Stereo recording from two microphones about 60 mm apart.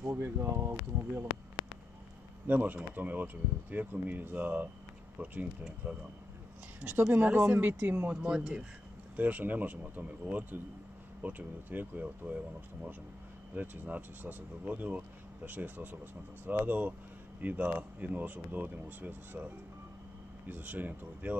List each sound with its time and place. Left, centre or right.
0.0 s speech: right
2.4 s speech: right
9.1 s speech: right
13.6 s speech: right